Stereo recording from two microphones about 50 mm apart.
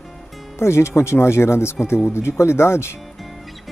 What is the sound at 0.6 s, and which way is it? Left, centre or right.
Speech, left.